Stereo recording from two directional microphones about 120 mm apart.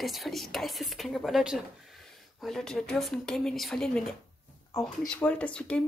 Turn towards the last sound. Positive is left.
turn(degrees=10)  # may be behind; listen again after turning